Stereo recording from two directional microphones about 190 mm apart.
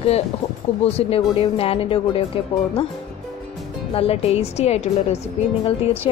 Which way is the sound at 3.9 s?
30° left (ahead or behind).